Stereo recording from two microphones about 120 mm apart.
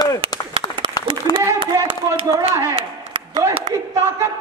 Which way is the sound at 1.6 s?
50° right (ahead or behind).